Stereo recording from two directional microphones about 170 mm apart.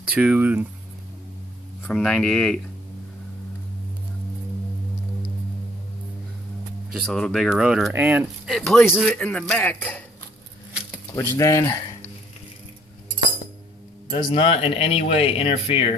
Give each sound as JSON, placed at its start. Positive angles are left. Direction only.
{"t": 0.1, "sound": "speech", "side_deg": -10}
{"t": 1.9, "sound": "speech", "side_deg": 5}
{"t": 7.1, "sound": "speech", "side_deg": 5}
{"t": 8.5, "sound": "speech", "side_deg": 0}
{"t": 11.3, "sound": "speech", "side_deg": 20}
{"t": 14.0, "sound": "speech", "side_deg": 30}